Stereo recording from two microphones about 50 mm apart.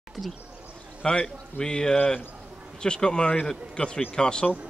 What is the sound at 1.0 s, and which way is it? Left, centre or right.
A man's voice, centre.